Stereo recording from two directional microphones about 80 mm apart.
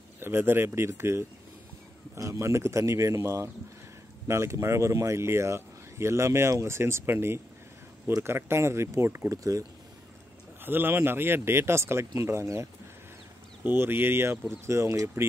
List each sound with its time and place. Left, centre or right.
0.2 s speech: right
9.3 s speech: right
10.6 s speech: right
13.7 s speech: right